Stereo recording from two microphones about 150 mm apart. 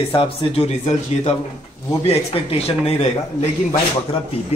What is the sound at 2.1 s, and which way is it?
A man's voice, 40° left (ahead or behind).